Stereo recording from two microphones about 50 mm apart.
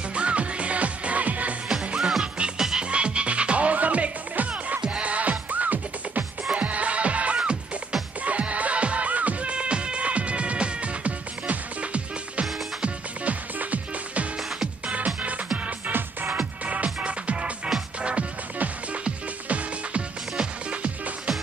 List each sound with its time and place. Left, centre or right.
0.1 s music: right
2.0 s music: centre
2.3 s music: right
15.9 s music: right
16.3 s music: right